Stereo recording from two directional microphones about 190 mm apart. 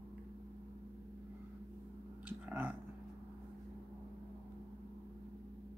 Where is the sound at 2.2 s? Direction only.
10° right (ahead or behind).